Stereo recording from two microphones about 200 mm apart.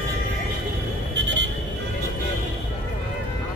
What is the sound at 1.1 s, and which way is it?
Vehicle, 60° right (ahead or behind).